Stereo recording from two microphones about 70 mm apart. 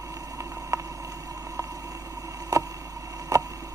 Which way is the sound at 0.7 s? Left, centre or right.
Right.